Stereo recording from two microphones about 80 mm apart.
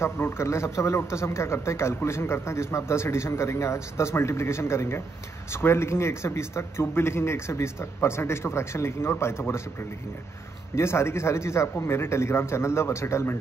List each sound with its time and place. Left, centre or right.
0.0 s a man's voice: left
10.7 s a man's voice: left